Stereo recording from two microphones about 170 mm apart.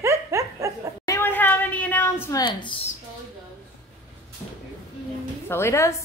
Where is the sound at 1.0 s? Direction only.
15° left (ahead or behind).